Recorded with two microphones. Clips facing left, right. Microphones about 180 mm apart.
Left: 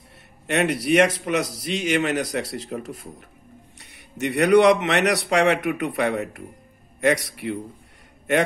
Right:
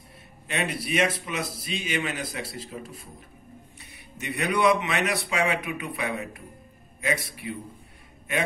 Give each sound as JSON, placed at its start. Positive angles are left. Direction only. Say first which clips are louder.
{"t": 0.5, "sound": "a man's voice", "louder": "left 9 dB", "side_deg": 70}